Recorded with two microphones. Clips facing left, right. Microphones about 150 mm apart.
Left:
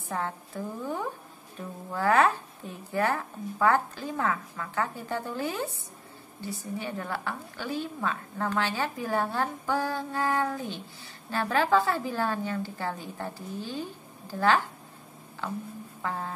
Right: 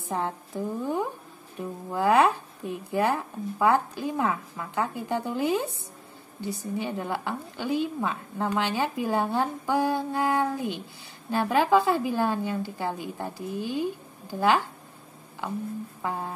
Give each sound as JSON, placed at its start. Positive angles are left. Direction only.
{"t": 0.1, "sound": "a woman's voice", "side_deg": -15}